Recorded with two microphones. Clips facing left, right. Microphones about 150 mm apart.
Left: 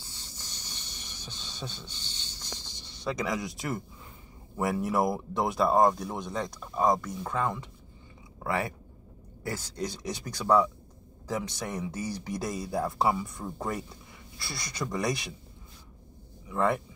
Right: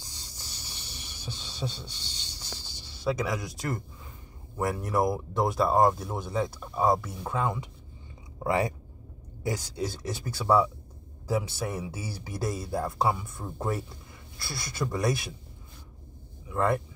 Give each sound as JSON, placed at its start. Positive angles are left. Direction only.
{"t": 0.0, "sound": "a sound", "side_deg": -15}
{"t": 4.6, "sound": "speech", "side_deg": 0}
{"t": 16.4, "sound": "speech", "side_deg": 0}